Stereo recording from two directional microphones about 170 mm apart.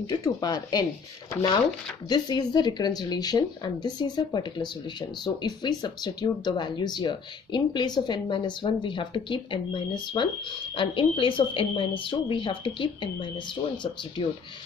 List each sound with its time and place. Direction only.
0.0 s speech: 25° left (ahead or behind)